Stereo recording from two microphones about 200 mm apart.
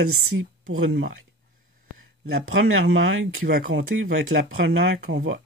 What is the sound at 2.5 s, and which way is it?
Speech, 80° right.